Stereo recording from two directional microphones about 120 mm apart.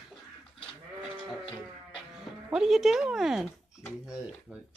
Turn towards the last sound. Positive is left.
turn(degrees=-5)  # may be behind; listen again after turning